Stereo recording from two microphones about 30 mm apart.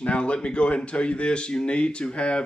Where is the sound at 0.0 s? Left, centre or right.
Left.